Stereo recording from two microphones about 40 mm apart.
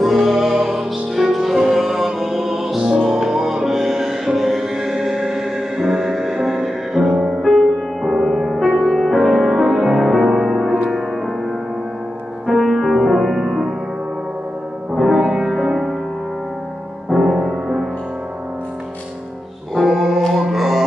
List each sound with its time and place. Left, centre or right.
0.0 s music: centre
2.8 s music: right
3.1 s music: centre
7.4 s music: centre
12.4 s music: centre
13.1 s music: centre
13.5 s music: right
15.0 s music: centre
17.1 s music: centre
19.7 s music: centre